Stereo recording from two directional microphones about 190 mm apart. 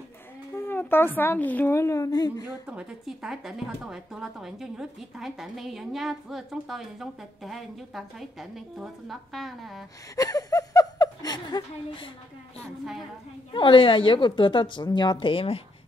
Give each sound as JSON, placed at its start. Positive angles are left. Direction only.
{"t": 0.6, "sound": "speech", "side_deg": 10}
{"t": 2.6, "sound": "speech", "side_deg": -5}
{"t": 10.1, "sound": "chuckle", "side_deg": 20}
{"t": 13.5, "sound": "a woman's voice", "side_deg": 25}